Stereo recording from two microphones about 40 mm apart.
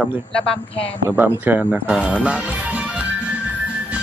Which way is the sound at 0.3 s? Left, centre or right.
Centre.